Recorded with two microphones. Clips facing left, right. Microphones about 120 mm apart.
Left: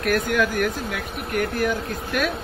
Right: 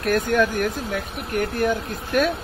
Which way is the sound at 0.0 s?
30° right (ahead or behind).